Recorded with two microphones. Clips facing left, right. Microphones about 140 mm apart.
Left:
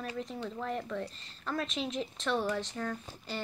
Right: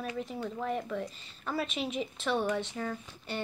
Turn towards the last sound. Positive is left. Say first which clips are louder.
# right 1 dB
turn(degrees=-5)  # may be behind; listen again after turning